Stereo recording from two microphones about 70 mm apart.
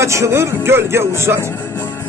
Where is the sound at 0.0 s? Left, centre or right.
Right.